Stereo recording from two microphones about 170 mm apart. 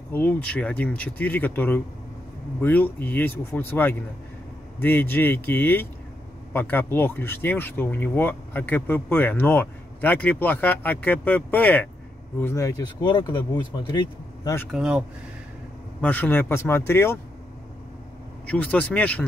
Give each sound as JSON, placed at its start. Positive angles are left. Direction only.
{"t": 0.1, "sound": "speech", "side_deg": 10}
{"t": 13.0, "sound": "speech", "side_deg": 25}
{"t": 14.7, "sound": "speech", "side_deg": -5}
{"t": 16.0, "sound": "speech", "side_deg": 10}
{"t": 18.5, "sound": "speech", "side_deg": 10}